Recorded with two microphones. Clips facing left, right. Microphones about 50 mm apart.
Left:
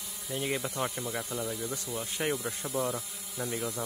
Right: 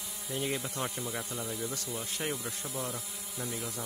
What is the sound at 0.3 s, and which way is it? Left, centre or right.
Speech, centre.